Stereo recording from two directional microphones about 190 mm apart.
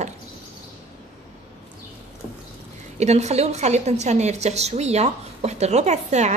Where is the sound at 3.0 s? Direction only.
35° right (ahead or behind).